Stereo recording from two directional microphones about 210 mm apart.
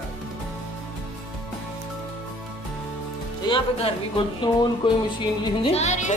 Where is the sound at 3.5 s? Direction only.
25° left (ahead or behind).